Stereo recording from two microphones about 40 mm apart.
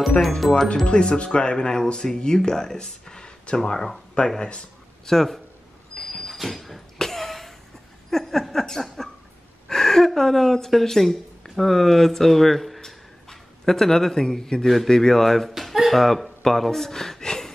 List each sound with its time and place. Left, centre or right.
0.4 s speech: centre
0.8 s speech: left
4.4 s a sound: centre
5.1 s speech: centre
5.9 s vehicle: centre
6.3 s a sound: centre
10.7 s speech: centre